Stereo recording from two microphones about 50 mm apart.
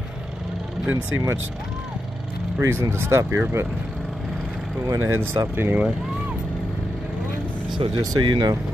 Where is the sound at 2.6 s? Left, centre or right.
Right.